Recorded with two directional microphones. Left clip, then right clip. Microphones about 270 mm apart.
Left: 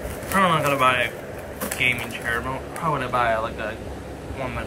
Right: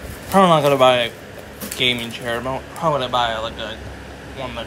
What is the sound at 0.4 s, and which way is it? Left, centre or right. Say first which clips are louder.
Speech: right 6 dB; centre.